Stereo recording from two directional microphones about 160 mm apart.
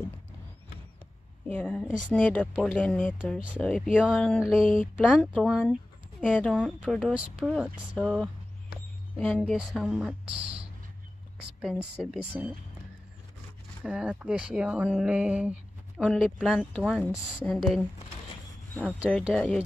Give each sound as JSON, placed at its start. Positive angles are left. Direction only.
{"t": 1.5, "sound": "speech", "side_deg": 5}
{"t": 6.6, "sound": "speech", "side_deg": -5}
{"t": 9.2, "sound": "speech", "side_deg": 5}
{"t": 11.6, "sound": "speech", "side_deg": -5}
{"t": 13.8, "sound": "speech", "side_deg": -5}